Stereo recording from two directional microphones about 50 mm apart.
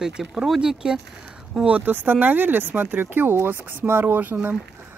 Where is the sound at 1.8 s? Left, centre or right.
Right.